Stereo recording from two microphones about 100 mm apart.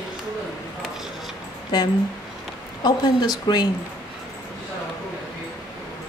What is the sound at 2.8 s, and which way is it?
Speech, 45° left (ahead or behind).